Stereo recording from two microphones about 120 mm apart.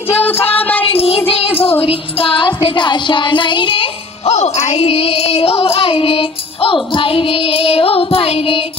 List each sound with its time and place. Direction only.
0.6 s child singing: 15° left (ahead or behind)
0.8 s child singing: 55° left (ahead or behind)
1.8 s music: 50° left (ahead or behind)
4.3 s music: 65° left (ahead or behind)